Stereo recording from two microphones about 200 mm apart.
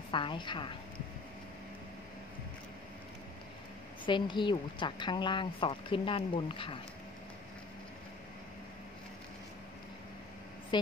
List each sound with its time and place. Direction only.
0.1 s speech: 25° left (ahead or behind)
4.0 s speech: 25° left (ahead or behind)
10.7 s a sound: 25° left (ahead or behind)